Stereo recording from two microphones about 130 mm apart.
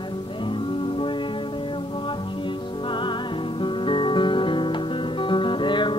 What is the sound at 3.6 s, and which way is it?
Guitar, 40° left (ahead or behind).